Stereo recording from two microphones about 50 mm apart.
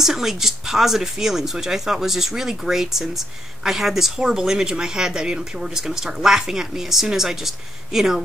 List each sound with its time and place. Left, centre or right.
0.0 s speech: centre